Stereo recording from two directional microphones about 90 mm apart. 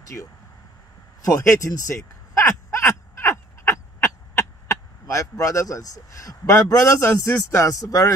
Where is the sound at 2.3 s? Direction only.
35° left (ahead or behind).